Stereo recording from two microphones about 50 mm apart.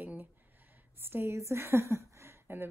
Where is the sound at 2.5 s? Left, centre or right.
Right.